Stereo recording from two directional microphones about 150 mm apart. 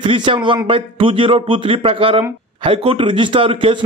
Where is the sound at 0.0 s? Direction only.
35° right (ahead or behind).